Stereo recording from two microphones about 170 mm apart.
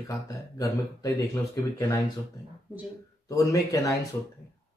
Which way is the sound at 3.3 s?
20° left (ahead or behind).